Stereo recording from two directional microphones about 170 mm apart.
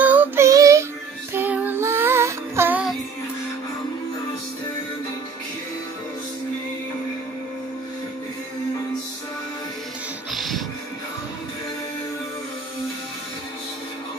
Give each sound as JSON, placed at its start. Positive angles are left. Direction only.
{"t": 0.0, "sound": "child singing", "side_deg": -10}
{"t": 1.3, "sound": "music", "side_deg": -10}
{"t": 10.3, "sound": "music", "side_deg": 0}